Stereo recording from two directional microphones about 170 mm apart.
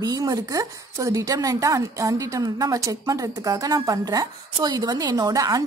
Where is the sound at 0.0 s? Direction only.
20° right (ahead or behind).